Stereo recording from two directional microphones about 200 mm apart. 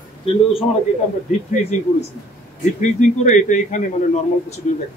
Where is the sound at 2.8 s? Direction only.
40° left (ahead or behind).